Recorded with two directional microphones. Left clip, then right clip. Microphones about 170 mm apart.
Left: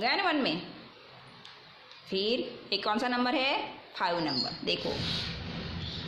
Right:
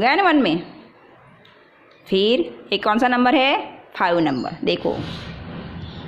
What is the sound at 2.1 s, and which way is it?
Speech, 60° right (ahead or behind).